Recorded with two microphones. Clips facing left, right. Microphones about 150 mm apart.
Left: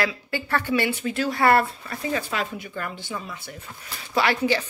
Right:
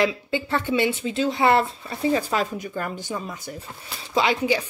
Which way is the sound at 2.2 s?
40° right (ahead or behind).